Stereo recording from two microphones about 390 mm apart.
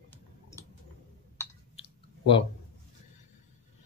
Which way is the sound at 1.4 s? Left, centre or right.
Centre.